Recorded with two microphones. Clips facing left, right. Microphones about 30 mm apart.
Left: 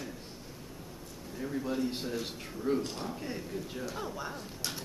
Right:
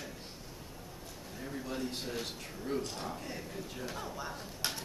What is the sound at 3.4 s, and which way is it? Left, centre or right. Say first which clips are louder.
Speech: left 3 dB; centre.